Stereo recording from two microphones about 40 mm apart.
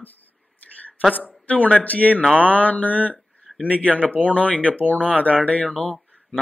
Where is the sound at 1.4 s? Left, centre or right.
Left.